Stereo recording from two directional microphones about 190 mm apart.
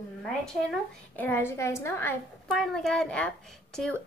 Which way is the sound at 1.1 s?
10° left (ahead or behind).